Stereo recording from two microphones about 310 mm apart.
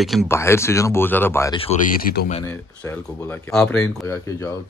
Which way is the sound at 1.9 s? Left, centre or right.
Left.